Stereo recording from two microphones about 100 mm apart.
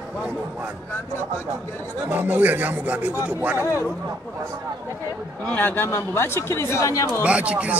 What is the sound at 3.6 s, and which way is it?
Speech, 30° left (ahead or behind).